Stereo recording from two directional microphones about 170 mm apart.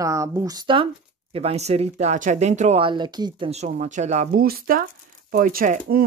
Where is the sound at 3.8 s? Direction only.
45° right (ahead or behind).